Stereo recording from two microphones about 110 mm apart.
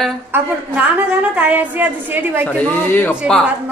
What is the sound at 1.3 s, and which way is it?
A woman's voice, 15° right (ahead or behind).